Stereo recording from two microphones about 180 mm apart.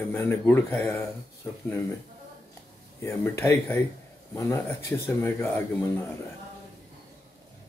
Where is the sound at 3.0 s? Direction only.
15° left (ahead or behind).